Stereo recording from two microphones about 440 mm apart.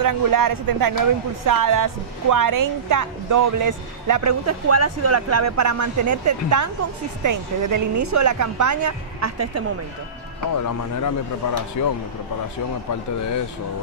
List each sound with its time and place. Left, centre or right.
0.0 s a woman's voice: right
10.5 s speech: left